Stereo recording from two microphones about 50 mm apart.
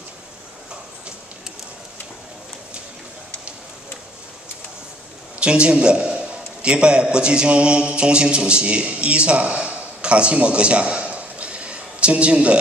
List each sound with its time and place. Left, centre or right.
5.4 s a man's voice: centre